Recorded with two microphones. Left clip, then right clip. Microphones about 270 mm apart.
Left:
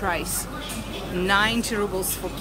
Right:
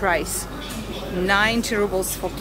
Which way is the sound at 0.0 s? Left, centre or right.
Centre.